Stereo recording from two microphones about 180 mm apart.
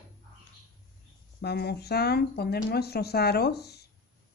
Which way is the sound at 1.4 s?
65° left (ahead or behind).